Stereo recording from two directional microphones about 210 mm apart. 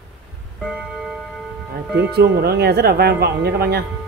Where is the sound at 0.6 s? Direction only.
Centre (ahead or behind).